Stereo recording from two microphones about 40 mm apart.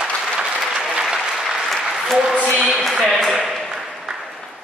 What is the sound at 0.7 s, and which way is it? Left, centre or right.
Applause, right.